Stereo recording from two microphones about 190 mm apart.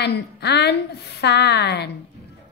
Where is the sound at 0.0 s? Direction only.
60° left (ahead or behind).